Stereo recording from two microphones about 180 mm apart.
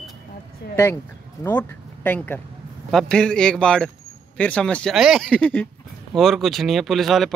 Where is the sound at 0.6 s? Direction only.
60° left (ahead or behind).